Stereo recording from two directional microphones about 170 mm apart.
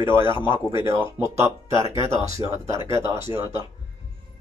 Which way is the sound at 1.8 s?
30° left (ahead or behind).